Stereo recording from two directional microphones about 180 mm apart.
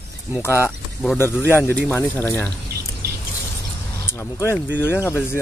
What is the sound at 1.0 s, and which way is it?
Speech, 10° left (ahead or behind).